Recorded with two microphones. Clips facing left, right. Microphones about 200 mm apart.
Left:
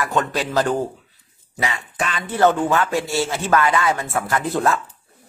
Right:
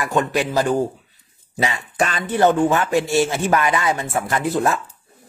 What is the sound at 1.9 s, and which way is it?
Speech, 40° right (ahead or behind).